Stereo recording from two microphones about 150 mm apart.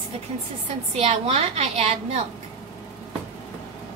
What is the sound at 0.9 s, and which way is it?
A woman's voice, 45° right (ahead or behind).